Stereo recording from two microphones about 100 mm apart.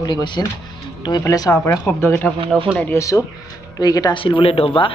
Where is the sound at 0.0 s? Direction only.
50° left (ahead or behind).